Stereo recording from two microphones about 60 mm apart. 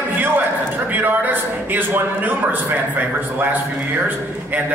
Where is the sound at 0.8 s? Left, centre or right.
Right.